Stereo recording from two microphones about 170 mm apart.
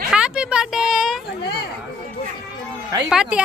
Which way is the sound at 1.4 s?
70° left (ahead or behind).